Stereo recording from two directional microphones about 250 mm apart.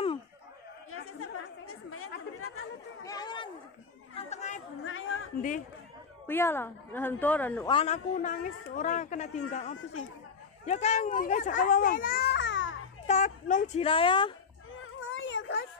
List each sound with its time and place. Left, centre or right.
0.9 s chatter: left
3.1 s a sound: centre
4.1 s chatter: left
4.8 s chatter: left
6.2 s a woman's voice: centre
7.6 s a man's voice: left
13.0 s a child's voice: left
14.8 s a sound: left